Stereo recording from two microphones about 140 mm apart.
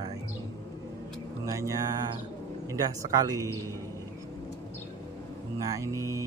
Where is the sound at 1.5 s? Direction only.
20° right (ahead or behind).